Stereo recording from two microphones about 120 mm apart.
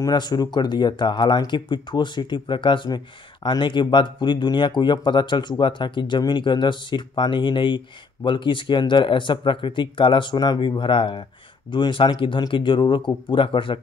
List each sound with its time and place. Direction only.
0.0 s speech: 35° left (ahead or behind)